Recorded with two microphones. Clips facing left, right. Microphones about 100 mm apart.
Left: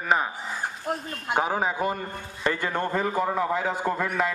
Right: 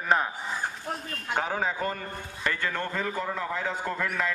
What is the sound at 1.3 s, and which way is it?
A man's voice, 15° left (ahead or behind).